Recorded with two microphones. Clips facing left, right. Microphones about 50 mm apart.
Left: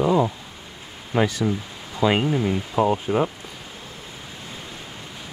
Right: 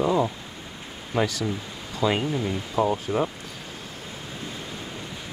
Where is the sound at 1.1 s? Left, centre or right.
Left.